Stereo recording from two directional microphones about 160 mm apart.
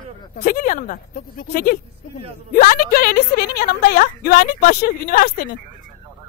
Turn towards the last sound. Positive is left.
turn(degrees=65)  # may be behind; listen again after turning